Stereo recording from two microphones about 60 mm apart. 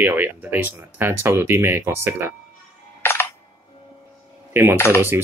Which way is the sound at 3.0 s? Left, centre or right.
Left.